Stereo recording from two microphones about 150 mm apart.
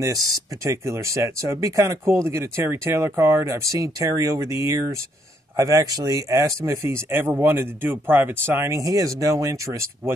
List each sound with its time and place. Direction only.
0.0 s speech: 20° right (ahead or behind)